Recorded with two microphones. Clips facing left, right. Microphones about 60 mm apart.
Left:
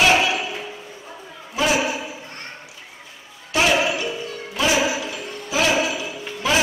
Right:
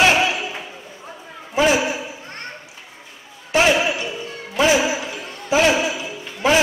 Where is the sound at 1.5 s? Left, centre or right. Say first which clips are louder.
Right 3 dB; right.